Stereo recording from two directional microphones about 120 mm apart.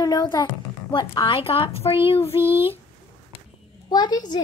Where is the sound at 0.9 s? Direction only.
45° left (ahead or behind).